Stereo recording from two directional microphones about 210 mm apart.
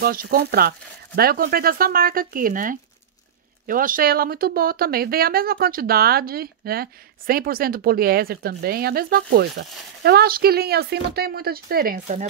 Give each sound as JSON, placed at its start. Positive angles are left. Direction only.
{"t": 0.0, "sound": "speech", "side_deg": -45}